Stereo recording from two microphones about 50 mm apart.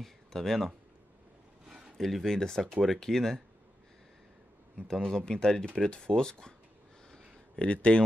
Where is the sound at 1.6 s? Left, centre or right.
Centre.